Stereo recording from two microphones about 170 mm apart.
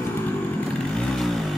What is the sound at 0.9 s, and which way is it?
Vehicle, centre (ahead or behind).